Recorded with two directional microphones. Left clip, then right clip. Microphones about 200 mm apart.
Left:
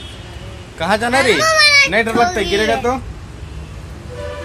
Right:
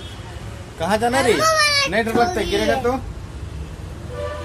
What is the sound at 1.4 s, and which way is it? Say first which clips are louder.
Speech: left 6 dB; 30° right (ahead or behind).